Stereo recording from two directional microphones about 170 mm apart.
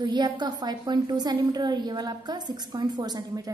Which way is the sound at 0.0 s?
25° right (ahead or behind).